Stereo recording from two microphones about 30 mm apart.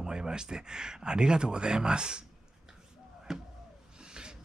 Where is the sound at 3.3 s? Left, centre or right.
Centre.